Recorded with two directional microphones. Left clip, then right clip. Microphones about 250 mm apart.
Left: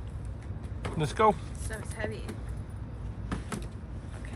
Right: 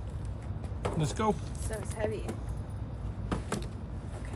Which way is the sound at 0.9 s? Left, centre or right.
Centre.